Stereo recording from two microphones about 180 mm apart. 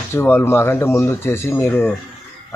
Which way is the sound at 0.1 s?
15° left (ahead or behind).